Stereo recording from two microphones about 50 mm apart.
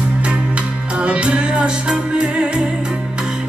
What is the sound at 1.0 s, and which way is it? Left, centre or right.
Music, right.